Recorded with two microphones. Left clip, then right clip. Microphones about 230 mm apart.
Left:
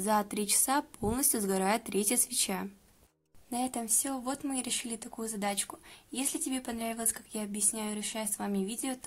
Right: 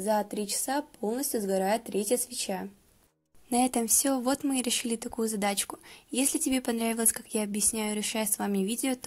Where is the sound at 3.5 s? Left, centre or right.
Right.